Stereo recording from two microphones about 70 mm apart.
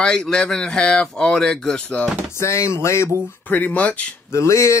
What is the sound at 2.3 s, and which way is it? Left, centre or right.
Speech, left.